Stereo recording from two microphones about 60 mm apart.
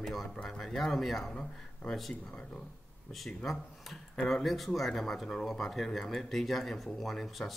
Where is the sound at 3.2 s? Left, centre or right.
Centre.